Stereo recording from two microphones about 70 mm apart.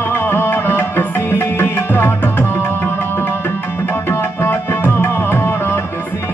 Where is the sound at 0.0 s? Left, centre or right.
Left.